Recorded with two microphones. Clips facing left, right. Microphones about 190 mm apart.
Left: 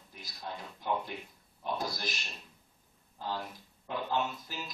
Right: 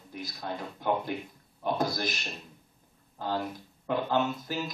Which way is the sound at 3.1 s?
70° right (ahead or behind).